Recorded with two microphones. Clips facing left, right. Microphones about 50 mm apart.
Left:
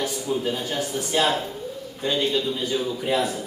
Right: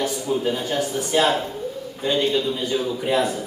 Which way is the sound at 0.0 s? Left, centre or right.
Centre.